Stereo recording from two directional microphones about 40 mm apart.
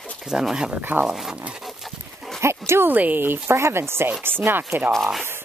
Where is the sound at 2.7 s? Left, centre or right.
Right.